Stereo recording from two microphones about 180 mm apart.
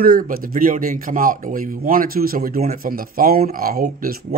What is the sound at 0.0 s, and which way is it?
A man's voice, 55° right (ahead or behind).